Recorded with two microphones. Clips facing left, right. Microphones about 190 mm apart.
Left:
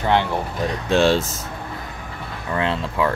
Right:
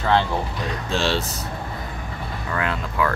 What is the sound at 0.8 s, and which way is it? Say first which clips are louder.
Speech: left 7 dB; 55° left (ahead or behind).